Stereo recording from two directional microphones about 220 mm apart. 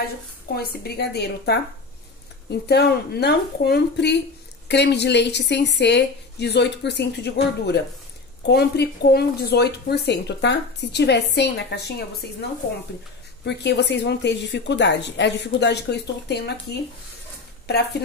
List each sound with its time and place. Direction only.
0.6 s speech: 45° left (ahead or behind)
13.5 s speech: 50° left (ahead or behind)